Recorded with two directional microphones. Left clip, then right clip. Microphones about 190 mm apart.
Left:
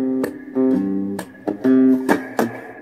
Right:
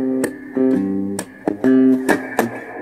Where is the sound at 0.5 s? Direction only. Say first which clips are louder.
Right 1 dB; 20° right (ahead or behind).